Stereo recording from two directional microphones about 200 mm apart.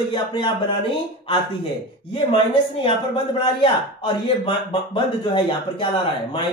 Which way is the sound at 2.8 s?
25° left (ahead or behind).